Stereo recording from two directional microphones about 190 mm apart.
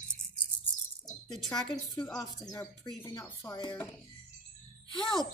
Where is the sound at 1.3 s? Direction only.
Centre (ahead or behind).